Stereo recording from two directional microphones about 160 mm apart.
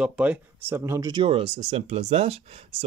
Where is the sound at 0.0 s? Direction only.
5° right (ahead or behind).